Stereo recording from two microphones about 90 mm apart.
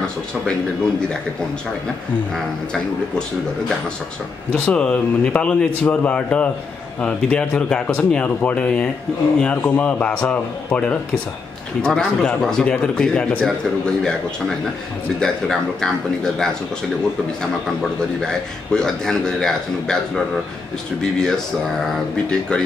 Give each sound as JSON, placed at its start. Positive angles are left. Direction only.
{"t": 2.3, "sound": "speech", "side_deg": 5}
{"t": 4.5, "sound": "speech", "side_deg": 15}
{"t": 15.1, "sound": "speech", "side_deg": 5}
{"t": 18.2, "sound": "speech", "side_deg": 5}
{"t": 21.0, "sound": "speech", "side_deg": 5}